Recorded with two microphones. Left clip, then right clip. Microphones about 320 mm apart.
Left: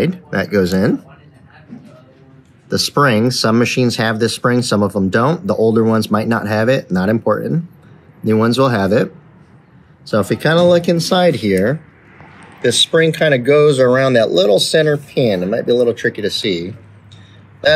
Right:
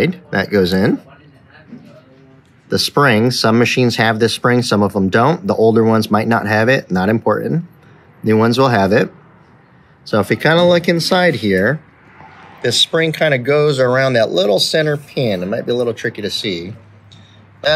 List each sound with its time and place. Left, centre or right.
0.0 s speech: right
2.7 s speech: right
13.5 s speech: right
15.9 s speech: right